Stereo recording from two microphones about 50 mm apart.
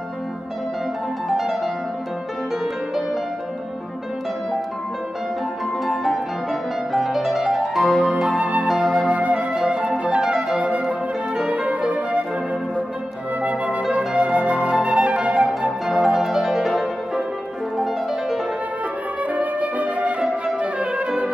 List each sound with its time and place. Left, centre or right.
1.3 s music: centre
5.9 s music: centre
8.3 s music: right
8.8 s flute: centre
9.1 s music: right
13.4 s flute: right; by 17.2 s centre
19.3 s music: right